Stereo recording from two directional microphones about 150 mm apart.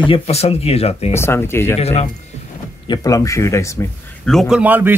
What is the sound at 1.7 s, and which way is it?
Speech, 45° left (ahead or behind).